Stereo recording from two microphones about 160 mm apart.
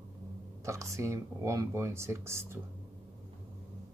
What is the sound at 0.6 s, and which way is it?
Speech, 20° right (ahead or behind).